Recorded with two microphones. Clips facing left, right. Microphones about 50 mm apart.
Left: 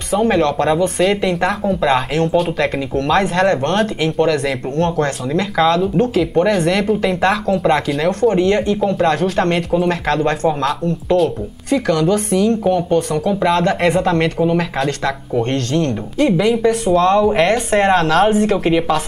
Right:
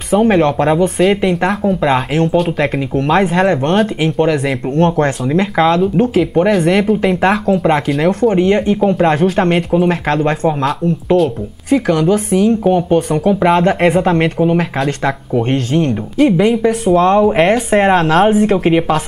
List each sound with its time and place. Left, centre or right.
0.1 s speech: centre
4.7 s speech: right
5.8 s speech: centre
16.2 s speech: centre